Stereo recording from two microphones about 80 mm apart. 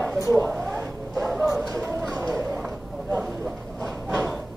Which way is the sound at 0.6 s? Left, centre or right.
Centre.